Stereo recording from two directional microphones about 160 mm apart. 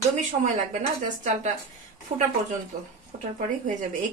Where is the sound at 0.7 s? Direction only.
50° right (ahead or behind).